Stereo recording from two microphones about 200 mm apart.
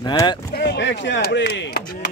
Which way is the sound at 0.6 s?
60° left (ahead or behind).